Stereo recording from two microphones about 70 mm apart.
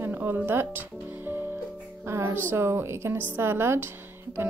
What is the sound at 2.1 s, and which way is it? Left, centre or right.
A woman's voice, right.